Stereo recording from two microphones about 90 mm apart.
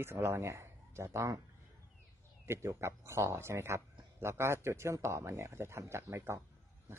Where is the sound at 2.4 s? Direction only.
30° right (ahead or behind).